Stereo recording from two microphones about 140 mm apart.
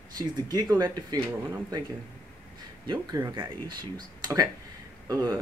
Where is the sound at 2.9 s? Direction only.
25° right (ahead or behind).